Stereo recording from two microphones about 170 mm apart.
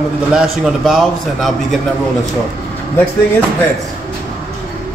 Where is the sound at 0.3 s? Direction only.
5° right (ahead or behind).